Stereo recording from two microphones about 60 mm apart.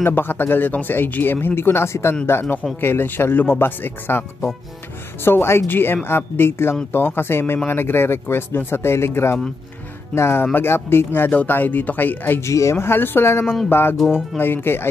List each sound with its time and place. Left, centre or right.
0.0 s speech: left
5.2 s a woman's voice: left
12.4 s speech: left
12.7 s speech: left